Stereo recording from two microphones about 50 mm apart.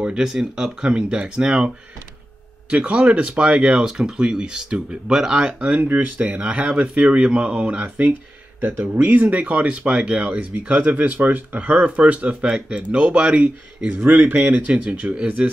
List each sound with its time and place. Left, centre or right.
0.0 s speech: centre
2.7 s speech: right
5.6 s speech: right
8.5 s speech: right
13.8 s speech: right
14.5 s speech: right